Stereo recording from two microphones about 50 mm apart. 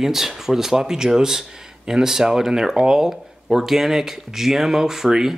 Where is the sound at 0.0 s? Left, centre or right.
Centre.